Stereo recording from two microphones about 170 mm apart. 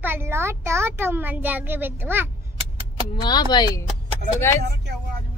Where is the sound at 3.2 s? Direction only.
25° left (ahead or behind).